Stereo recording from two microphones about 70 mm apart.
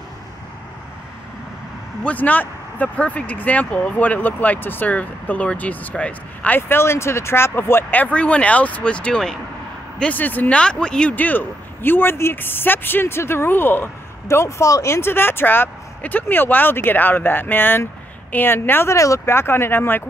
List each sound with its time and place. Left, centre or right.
2.0 s speech: left
6.8 s speech: left
10.6 s speech: centre
11.1 s speech: left
14.2 s speech: left
18.9 s speech: left